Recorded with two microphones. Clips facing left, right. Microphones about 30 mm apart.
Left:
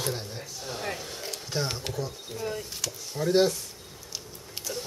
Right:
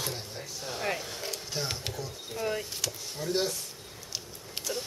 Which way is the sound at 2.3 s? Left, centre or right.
Centre.